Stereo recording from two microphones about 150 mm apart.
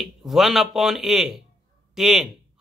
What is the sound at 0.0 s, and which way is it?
A man's voice, centre (ahead or behind).